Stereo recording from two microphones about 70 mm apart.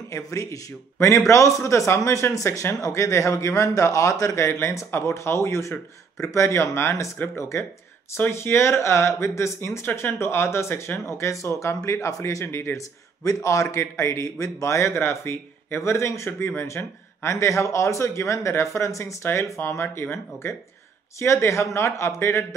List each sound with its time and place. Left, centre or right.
0.1 s speech: left
19.8 s speech: left